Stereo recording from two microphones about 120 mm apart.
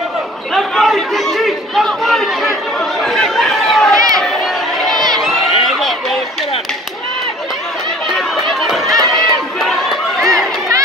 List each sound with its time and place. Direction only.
0.6 s chatter: centre (ahead or behind)
3.9 s crowd: 30° right (ahead or behind)
8.1 s run: centre (ahead or behind)
9.6 s a sound: centre (ahead or behind)